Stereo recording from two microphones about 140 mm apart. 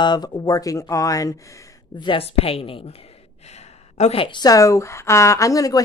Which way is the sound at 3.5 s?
50° left (ahead or behind).